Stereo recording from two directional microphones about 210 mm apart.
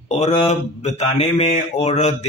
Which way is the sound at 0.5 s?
30° left (ahead or behind).